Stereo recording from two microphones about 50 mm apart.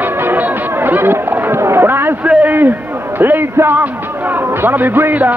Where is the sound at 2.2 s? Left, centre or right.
Right.